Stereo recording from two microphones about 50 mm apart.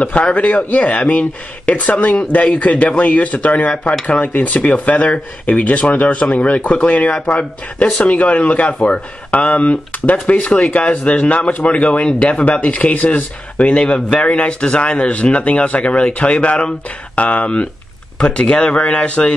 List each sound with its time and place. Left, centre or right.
0.0 s speech: left